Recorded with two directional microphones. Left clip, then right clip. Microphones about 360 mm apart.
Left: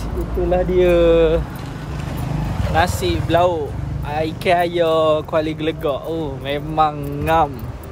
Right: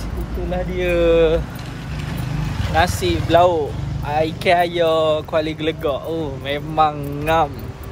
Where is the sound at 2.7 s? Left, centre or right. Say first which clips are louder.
Even; centre.